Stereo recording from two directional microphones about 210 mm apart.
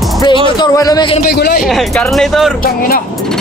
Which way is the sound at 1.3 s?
50° left (ahead or behind).